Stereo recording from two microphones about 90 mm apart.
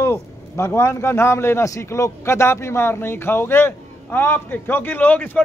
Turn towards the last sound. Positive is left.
turn(degrees=15)  # may be behind; listen again after turning